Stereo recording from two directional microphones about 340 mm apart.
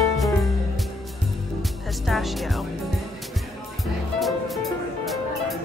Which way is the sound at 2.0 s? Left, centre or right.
Centre.